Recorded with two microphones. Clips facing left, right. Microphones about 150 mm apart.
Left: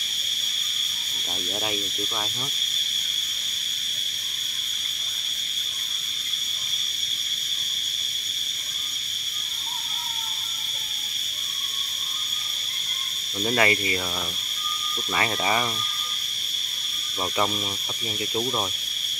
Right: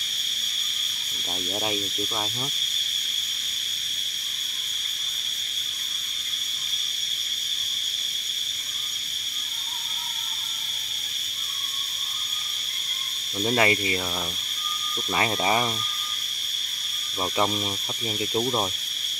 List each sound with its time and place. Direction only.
13.4 s cricket: 15° right (ahead or behind)
15.1 s cricket: 15° right (ahead or behind)
17.2 s cricket: 10° right (ahead or behind)